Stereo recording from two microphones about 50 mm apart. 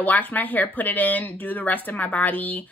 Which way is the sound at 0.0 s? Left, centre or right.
Left.